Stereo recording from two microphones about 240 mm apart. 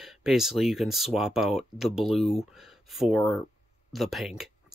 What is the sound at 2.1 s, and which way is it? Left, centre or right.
Speech, left.